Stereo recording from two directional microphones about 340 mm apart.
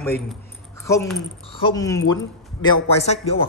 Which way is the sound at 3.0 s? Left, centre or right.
Centre.